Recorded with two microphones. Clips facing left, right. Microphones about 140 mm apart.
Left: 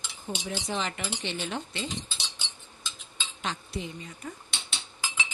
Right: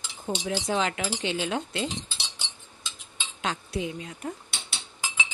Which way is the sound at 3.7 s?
85° right.